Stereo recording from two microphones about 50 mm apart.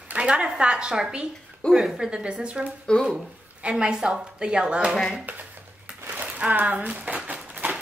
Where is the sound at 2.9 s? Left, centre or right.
Centre.